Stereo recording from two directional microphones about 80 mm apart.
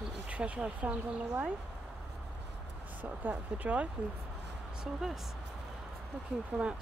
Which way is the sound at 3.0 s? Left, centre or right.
Right.